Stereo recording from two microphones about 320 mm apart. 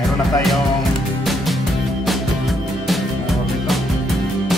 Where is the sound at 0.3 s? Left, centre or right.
Centre.